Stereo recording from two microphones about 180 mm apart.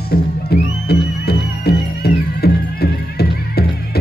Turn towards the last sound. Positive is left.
turn(degrees=60)  # may be behind; listen again after turning